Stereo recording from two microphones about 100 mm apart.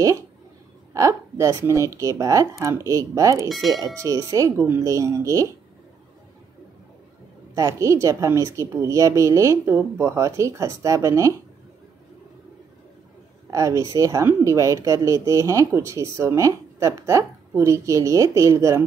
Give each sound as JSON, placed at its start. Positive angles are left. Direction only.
{"t": 0.9, "sound": "speech", "side_deg": -30}
{"t": 3.4, "sound": "speech", "side_deg": 0}
{"t": 4.0, "sound": "speech", "side_deg": -30}
{"t": 7.5, "sound": "speech", "side_deg": -30}
{"t": 13.5, "sound": "speech", "side_deg": -35}